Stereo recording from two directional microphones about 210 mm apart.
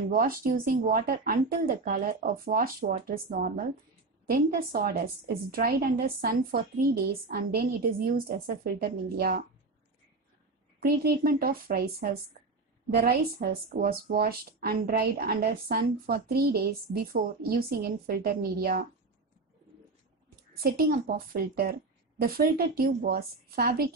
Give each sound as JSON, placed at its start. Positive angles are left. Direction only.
{"t": 0.1, "sound": "speech", "side_deg": -40}
{"t": 10.8, "sound": "speech", "side_deg": -45}
{"t": 20.5, "sound": "a woman's voice", "side_deg": -45}